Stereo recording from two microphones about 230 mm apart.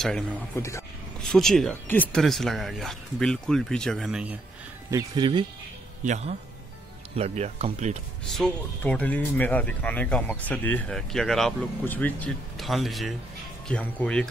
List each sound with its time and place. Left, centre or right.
0.0 s speech: centre
0.6 s speech: centre
4.9 s speech: centre
8.3 s speech: centre